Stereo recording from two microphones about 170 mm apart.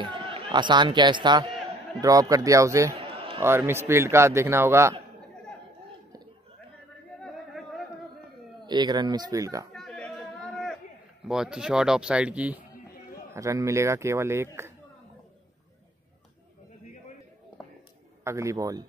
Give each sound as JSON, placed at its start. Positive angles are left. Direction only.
{"t": 0.0, "sound": "speech", "side_deg": -30}
{"t": 3.0, "sound": "a sound", "side_deg": -35}
{"t": 3.3, "sound": "speech", "side_deg": -15}
{"t": 7.2, "sound": "a sound", "side_deg": 0}
{"t": 8.6, "sound": "speech", "side_deg": -25}
{"t": 9.8, "sound": "chatter", "side_deg": 5}
{"t": 11.2, "sound": "speech", "side_deg": -5}
{"t": 13.3, "sound": "speech", "side_deg": -20}
{"t": 18.2, "sound": "speech", "side_deg": -15}